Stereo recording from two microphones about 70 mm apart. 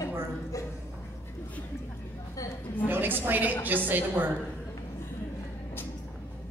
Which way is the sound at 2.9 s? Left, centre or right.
Right.